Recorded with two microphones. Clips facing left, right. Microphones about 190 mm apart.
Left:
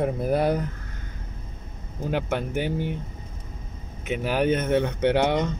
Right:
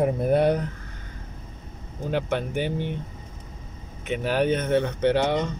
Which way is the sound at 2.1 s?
5° left (ahead or behind).